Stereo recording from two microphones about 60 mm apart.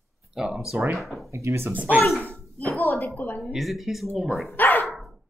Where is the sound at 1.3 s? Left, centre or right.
Right.